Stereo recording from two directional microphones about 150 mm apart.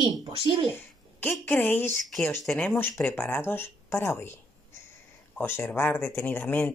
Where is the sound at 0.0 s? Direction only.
35° right (ahead or behind).